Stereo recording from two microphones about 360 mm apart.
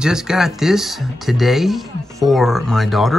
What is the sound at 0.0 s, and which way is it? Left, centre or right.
Speech, centre.